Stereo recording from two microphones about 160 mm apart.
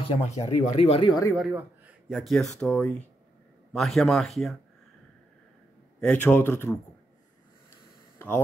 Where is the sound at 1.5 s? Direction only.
15° right (ahead or behind).